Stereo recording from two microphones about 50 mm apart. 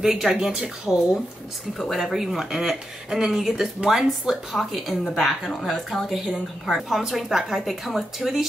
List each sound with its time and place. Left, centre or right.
0.0 s speech: centre
1.8 s speech: centre